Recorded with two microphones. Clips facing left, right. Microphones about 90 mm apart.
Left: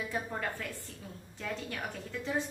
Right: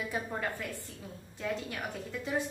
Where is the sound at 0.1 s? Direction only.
10° right (ahead or behind).